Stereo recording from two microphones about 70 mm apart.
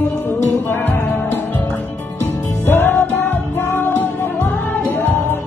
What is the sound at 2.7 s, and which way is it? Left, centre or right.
Music, left.